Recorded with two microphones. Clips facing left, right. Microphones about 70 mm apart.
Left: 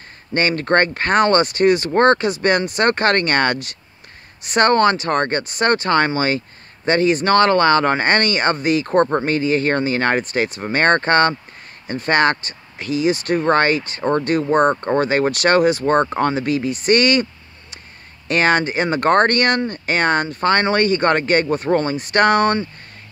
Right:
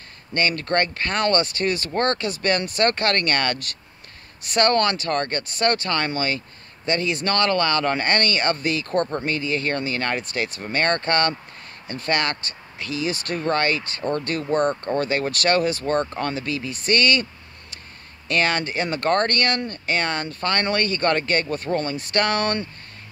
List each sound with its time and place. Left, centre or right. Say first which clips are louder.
0.3 s speech: left 5 dB; left
4.6 s speech: left 5 dB; left
14.5 s speech: left 5 dB; left
15.0 s speech: left 6 dB; left
18.3 s speech: left 6 dB; left